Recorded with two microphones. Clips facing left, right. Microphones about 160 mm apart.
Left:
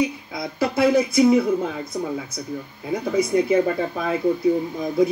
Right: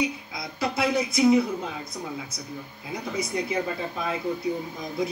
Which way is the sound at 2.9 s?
55° left (ahead or behind).